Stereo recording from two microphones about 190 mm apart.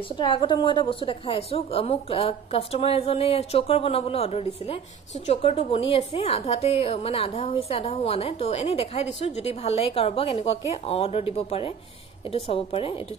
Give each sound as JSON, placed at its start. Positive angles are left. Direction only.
{"t": 0.2, "sound": "a woman's voice", "side_deg": 25}